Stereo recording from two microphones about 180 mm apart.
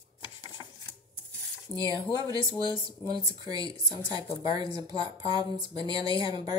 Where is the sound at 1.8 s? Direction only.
20° right (ahead or behind).